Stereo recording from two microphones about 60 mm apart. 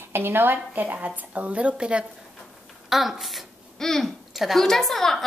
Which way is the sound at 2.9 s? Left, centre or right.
Centre.